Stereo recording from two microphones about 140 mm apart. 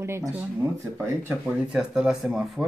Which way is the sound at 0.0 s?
20° right (ahead or behind).